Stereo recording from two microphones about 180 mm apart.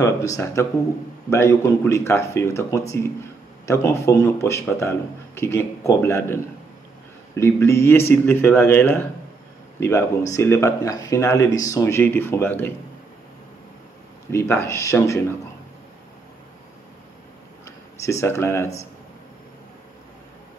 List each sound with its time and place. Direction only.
0.0 s a man's voice: 20° left (ahead or behind)
14.3 s a man's voice: 15° left (ahead or behind)
17.6 s speech: 15° left (ahead or behind)